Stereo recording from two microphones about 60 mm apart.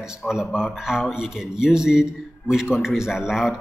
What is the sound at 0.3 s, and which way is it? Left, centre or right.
A man's voice, centre.